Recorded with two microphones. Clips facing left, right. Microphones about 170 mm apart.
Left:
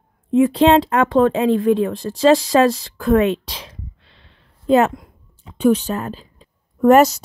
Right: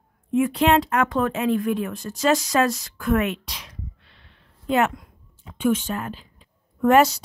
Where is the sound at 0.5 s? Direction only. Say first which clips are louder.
Left 6 dB; 30° left (ahead or behind).